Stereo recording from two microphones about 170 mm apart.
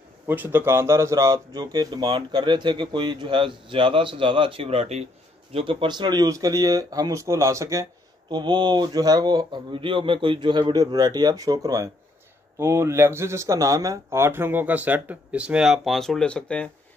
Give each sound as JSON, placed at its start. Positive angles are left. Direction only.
{"t": 0.3, "sound": "speech", "side_deg": -10}